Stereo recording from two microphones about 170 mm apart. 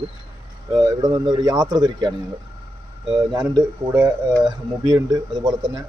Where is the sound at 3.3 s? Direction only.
20° right (ahead or behind).